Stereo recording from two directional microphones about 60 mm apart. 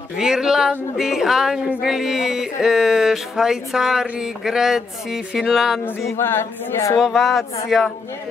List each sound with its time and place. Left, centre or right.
0.2 s speech: centre
5.9 s a capella: left
7.0 s speech: centre